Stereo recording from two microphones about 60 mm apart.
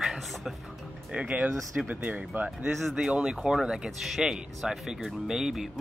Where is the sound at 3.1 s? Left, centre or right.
Centre.